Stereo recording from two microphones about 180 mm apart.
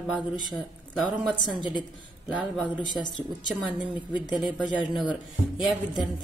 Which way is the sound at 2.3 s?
10° right (ahead or behind).